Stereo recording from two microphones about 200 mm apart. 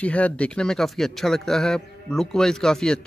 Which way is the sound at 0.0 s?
5° left (ahead or behind).